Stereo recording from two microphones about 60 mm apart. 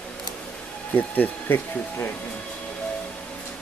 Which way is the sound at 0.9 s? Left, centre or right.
Left.